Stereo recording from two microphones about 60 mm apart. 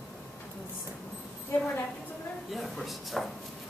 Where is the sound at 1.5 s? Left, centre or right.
Left.